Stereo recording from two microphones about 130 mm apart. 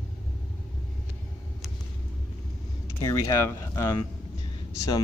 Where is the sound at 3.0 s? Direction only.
25° left (ahead or behind).